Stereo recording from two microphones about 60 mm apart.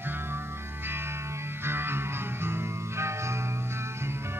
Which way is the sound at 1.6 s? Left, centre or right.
Right.